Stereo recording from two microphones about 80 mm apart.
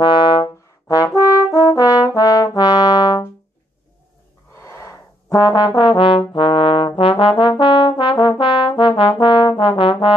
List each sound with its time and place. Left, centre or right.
0.0 s brass instrument: left
0.9 s brass instrument: left
4.6 s brass instrument: left
7.0 s trombone: left